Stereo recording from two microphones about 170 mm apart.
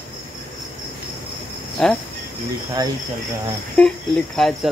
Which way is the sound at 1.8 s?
Centre (ahead or behind).